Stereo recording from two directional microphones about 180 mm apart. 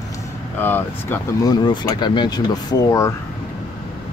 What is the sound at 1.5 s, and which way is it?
Speech, 25° left (ahead or behind).